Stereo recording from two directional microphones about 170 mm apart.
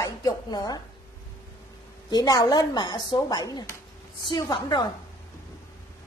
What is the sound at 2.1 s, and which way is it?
A woman's voice, 20° left (ahead or behind).